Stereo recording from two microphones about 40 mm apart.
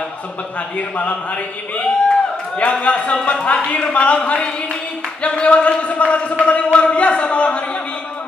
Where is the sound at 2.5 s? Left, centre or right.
Left.